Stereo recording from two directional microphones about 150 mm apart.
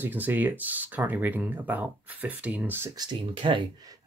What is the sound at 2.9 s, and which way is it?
Speech, 30° right (ahead or behind).